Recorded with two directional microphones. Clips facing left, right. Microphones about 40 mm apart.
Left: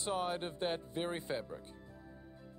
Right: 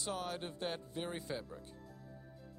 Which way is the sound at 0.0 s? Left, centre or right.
Left.